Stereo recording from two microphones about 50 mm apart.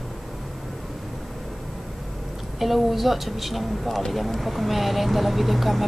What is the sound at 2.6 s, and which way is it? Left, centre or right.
Speech, centre.